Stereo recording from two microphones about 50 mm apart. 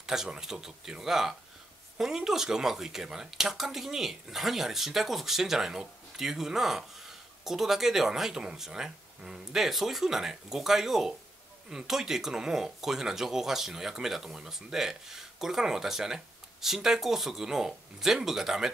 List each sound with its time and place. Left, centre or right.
0.0 s speech: centre